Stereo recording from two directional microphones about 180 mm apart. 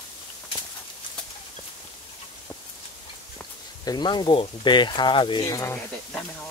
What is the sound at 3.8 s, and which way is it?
Speech, 25° left (ahead or behind).